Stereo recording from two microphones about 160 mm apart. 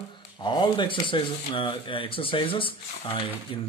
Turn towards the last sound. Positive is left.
turn(degrees=30)  # may be behind; listen again after turning